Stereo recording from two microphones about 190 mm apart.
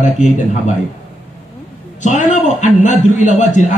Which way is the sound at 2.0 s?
40° left (ahead or behind).